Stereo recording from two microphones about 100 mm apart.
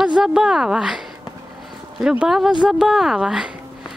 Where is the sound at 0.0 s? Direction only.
5° right (ahead or behind).